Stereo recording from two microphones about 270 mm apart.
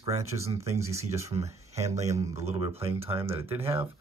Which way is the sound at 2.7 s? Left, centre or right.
Centre.